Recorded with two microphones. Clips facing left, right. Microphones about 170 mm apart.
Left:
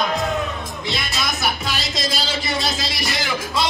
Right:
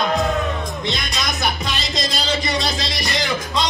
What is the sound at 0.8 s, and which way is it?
Music, 5° left (ahead or behind).